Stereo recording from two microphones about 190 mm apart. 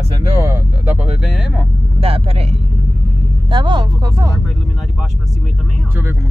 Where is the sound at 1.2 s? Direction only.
Centre (ahead or behind).